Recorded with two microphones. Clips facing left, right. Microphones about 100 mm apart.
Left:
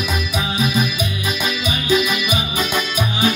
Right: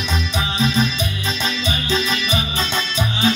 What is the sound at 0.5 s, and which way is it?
Music, 10° left (ahead or behind).